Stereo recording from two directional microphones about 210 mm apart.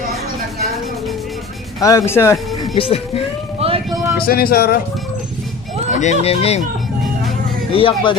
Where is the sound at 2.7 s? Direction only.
25° left (ahead or behind).